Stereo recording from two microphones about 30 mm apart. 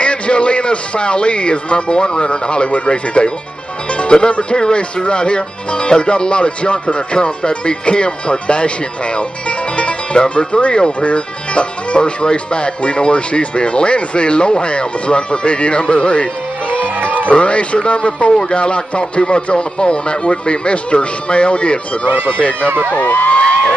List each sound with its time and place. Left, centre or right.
0.0 s speech: left
16.7 s music: right
17.3 s speech: left
22.8 s speech: left